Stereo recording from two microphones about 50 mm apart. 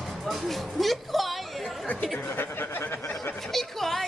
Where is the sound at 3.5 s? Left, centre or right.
Centre.